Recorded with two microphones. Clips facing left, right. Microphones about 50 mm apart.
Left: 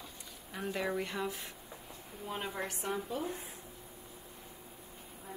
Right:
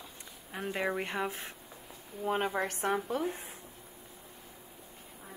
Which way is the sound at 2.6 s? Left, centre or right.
Right.